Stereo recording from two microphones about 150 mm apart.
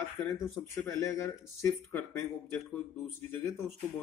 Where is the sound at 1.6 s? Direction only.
20° left (ahead or behind).